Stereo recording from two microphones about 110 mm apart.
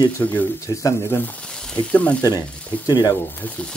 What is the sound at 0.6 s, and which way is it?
Speech, 30° left (ahead or behind).